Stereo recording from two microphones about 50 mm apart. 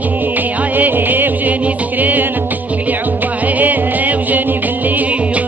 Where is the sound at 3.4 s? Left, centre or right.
Right.